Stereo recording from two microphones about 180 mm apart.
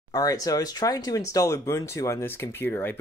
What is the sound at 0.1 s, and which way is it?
Speech, 20° left (ahead or behind).